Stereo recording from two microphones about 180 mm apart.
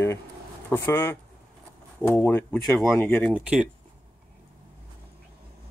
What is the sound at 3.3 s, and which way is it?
Speech, 5° right (ahead or behind).